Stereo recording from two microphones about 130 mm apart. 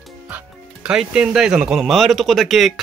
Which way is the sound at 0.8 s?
10° right (ahead or behind).